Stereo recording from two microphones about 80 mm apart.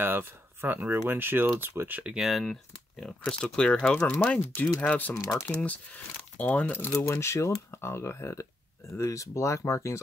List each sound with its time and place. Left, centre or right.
0.0 s speech: right
2.1 s speech: centre
4.1 s speech: left
5.1 s speech: left
6.3 s speech: left
7.1 s speech: left